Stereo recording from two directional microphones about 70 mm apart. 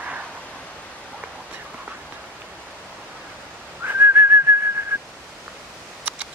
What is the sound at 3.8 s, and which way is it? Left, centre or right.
Whistling, right.